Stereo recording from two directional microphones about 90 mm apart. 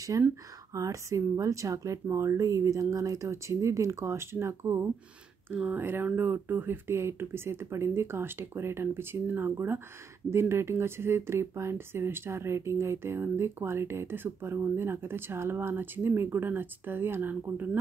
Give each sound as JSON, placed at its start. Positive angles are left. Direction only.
{"t": 0.1, "sound": "a woman's voice", "side_deg": -35}